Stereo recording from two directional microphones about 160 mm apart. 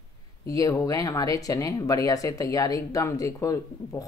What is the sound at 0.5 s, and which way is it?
Speech, 20° left (ahead or behind).